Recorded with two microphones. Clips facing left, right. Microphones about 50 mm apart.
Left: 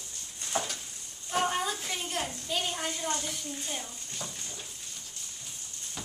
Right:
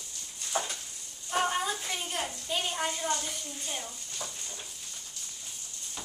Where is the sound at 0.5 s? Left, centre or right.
Centre.